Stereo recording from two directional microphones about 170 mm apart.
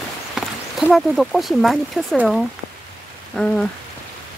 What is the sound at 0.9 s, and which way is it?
Speech, centre (ahead or behind).